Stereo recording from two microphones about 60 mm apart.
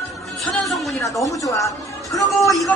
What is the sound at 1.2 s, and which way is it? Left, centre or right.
Speech, left.